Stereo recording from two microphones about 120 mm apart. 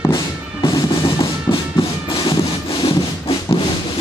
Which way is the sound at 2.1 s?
45° left (ahead or behind).